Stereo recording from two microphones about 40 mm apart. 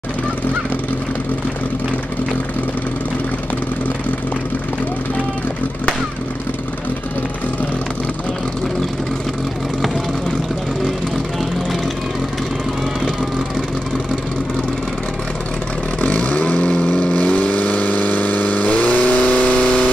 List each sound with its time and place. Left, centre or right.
16.0 s vehicle: left